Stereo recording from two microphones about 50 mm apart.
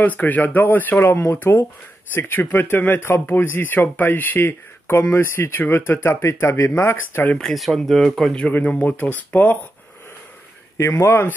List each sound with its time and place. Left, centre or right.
0.0 s speech: left
1.0 s speech: left
1.3 s speech: left
6.7 s speech: left
7.5 s speech: centre
8.6 s speech: left
10.8 s speech: left